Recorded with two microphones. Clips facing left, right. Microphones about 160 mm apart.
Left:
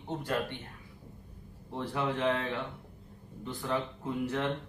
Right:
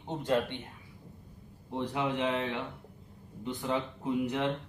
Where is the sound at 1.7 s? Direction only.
15° right (ahead or behind).